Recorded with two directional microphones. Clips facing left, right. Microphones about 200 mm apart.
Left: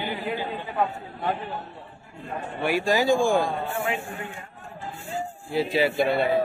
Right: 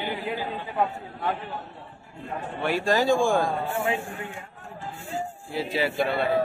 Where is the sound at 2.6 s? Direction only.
10° left (ahead or behind).